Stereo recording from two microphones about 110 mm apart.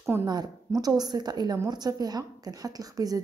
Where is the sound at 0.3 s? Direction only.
35° right (ahead or behind).